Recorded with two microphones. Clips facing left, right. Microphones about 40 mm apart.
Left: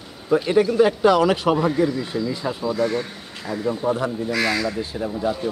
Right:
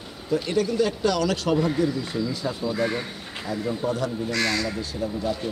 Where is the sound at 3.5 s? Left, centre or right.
Left.